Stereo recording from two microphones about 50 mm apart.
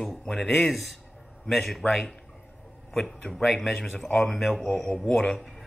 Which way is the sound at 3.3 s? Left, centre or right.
Centre.